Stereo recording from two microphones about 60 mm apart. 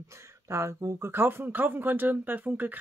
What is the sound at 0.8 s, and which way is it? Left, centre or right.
Speech, right.